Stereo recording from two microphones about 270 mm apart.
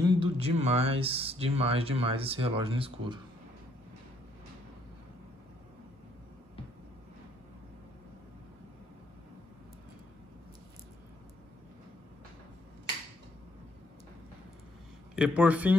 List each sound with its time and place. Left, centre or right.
0.0 s speech: centre
15.1 s speech: centre